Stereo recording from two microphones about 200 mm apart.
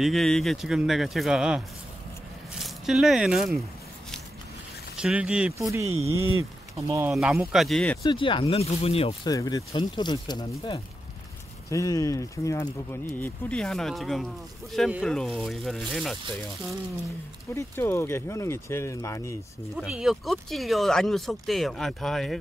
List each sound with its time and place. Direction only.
0.0 s speech: centre (ahead or behind)
2.6 s speech: centre (ahead or behind)
4.9 s speech: 5° right (ahead or behind)
5.6 s speech: 15° right (ahead or behind)
7.5 s speech: centre (ahead or behind)
8.0 s speech: 25° left (ahead or behind)
9.3 s speech: 15° left (ahead or behind); by 16.2 s centre (ahead or behind)
17.6 s speech: 15° left (ahead or behind)
19.8 s speech: 5° right (ahead or behind)